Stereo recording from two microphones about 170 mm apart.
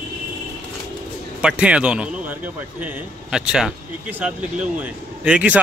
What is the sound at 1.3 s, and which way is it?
Speech, 5° right (ahead or behind).